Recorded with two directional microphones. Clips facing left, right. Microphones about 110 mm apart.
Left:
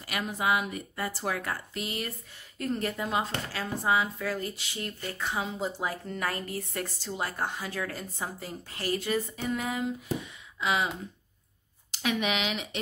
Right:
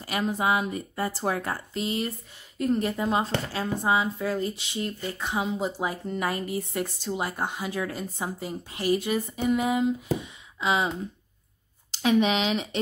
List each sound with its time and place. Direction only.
0.0 s speech: 30° right (ahead or behind)
11.9 s speech: 30° right (ahead or behind)